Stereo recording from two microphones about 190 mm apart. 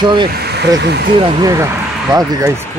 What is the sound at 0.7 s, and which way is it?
Speech, 60° right (ahead or behind).